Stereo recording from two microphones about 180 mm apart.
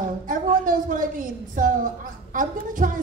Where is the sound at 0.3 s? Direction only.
45° right (ahead or behind).